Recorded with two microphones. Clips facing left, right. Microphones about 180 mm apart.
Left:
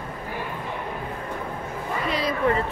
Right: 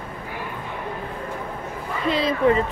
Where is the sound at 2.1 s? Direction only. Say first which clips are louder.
Right 5 dB; 25° right (ahead or behind).